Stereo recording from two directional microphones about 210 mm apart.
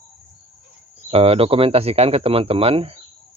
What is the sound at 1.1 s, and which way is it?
Speech, 30° right (ahead or behind).